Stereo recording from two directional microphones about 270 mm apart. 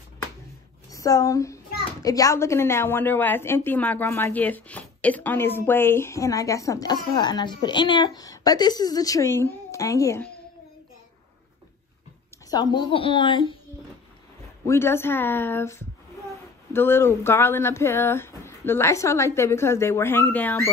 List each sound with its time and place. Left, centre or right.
0.9 s a woman's voice: centre
12.4 s a woman's voice: centre
14.7 s a woman's voice: centre